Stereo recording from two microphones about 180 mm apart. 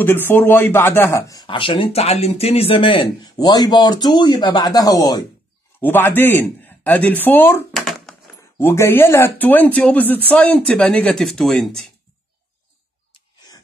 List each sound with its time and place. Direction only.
0.0 s speech: 10° left (ahead or behind)
7.7 s a sound: centre (ahead or behind)
8.5 s speech: 15° left (ahead or behind)